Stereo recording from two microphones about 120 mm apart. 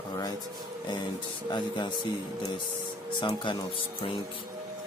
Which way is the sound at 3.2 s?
40° left (ahead or behind).